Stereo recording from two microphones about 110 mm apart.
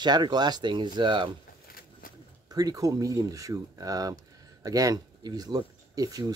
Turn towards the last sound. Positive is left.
turn(degrees=-35)  # may be behind; listen again after turning